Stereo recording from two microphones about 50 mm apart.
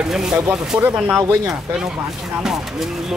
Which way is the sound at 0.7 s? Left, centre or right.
Right.